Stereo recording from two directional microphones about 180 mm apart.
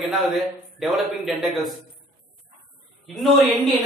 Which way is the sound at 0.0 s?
Centre (ahead or behind).